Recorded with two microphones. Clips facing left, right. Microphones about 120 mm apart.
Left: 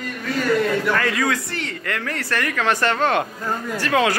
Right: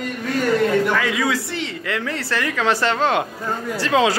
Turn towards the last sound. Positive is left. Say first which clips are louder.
# right 2 dB
turn(degrees=-20)  # may be behind; listen again after turning